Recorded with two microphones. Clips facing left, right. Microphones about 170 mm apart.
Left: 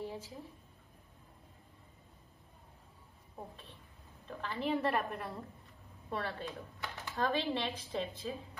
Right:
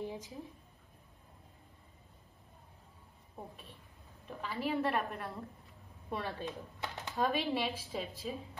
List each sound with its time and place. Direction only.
0.0 s a sound: 15° right (ahead or behind)
4.3 s a woman's voice: 10° right (ahead or behind)
6.0 s speech: 15° right (ahead or behind)